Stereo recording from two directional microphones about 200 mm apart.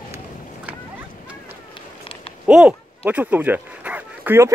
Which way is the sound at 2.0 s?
25° left (ahead or behind).